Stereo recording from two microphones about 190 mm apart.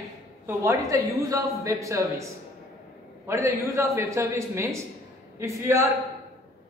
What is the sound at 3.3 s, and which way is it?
A man's voice, 15° right (ahead or behind).